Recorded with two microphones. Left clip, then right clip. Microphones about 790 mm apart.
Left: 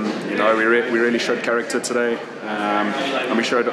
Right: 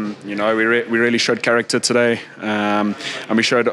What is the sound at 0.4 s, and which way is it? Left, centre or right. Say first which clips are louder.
Speech: even; right.